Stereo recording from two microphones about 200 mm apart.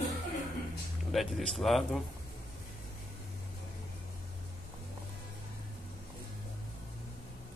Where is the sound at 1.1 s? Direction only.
Centre (ahead or behind).